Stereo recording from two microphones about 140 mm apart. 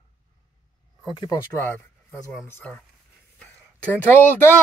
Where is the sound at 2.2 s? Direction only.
20° left (ahead or behind).